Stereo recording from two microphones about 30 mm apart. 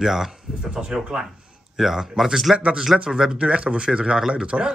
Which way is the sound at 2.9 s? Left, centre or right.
Centre.